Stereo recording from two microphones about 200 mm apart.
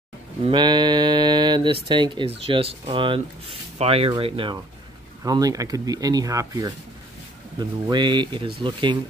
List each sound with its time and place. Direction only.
0.5 s speech: 20° right (ahead or behind)